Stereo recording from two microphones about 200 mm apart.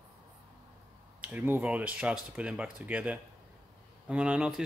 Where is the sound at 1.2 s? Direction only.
10° right (ahead or behind).